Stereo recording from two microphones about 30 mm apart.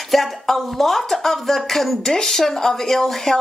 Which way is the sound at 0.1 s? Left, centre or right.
Centre.